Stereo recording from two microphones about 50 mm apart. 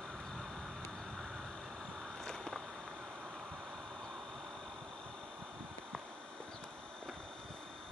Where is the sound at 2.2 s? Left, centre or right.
Centre.